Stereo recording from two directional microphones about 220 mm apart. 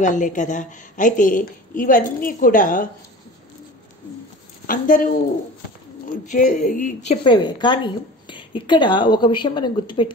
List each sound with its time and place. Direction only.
0.0 s a woman's voice: 35° left (ahead or behind)
4.6 s a woman's voice: 40° left (ahead or behind)
6.2 s a woman's voice: 35° left (ahead or behind)